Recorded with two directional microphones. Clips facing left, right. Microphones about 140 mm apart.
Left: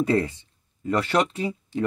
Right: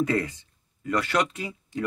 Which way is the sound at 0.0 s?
30° left (ahead or behind).